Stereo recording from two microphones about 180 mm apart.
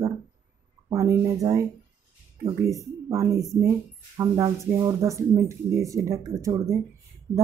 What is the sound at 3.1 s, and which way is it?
Speech, 20° right (ahead or behind).